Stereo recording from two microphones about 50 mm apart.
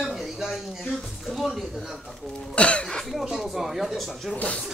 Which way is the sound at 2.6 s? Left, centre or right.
Left.